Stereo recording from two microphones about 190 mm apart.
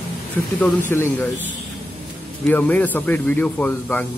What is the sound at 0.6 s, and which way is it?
Speech, 10° left (ahead or behind).